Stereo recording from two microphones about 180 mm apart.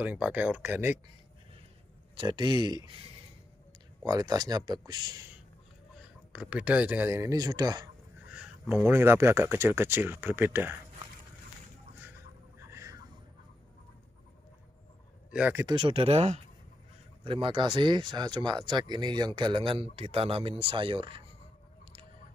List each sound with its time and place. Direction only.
0.0 s speech: 10° right (ahead or behind)
2.1 s speech: 25° right (ahead or behind)
4.0 s speech: 20° right (ahead or behind)
6.3 s speech: 5° right (ahead or behind); by 7.9 s 20° right (ahead or behind)
8.3 s a sound: 5° right (ahead or behind)
8.8 s speech: 15° right (ahead or behind)
12.6 s a sound: 15° right (ahead or behind)
15.3 s speech: 10° right (ahead or behind)
15.6 s speech: 30° right (ahead or behind)